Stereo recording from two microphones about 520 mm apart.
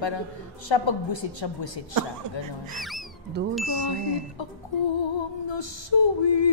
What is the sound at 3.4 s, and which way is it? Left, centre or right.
Speech, centre.